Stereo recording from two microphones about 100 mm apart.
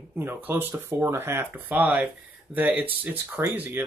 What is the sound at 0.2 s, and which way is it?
Speech, 20° right (ahead or behind).